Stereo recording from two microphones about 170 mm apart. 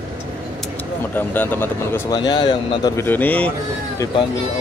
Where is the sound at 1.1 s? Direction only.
10° left (ahead or behind).